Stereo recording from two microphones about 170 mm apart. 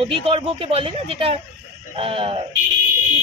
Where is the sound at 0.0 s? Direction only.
35° right (ahead or behind).